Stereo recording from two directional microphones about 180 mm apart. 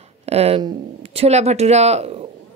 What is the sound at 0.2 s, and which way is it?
A woman's voice, 35° right (ahead or behind).